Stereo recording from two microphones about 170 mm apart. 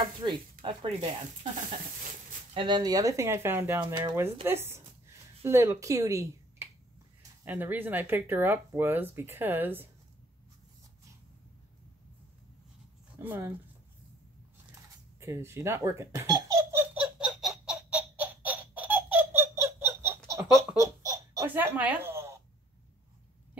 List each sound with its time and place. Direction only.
0.2 s speech: 30° right (ahead or behind)
2.5 s speech: 25° right (ahead or behind); by 9.8 s 10° right (ahead or behind)
13.2 s speech: 10° right (ahead or behind)
15.1 s baby laughter: 15° right (ahead or behind)